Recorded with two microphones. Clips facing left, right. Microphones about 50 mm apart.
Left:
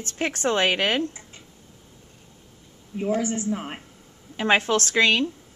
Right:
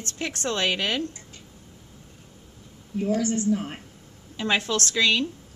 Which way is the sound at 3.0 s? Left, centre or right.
Left.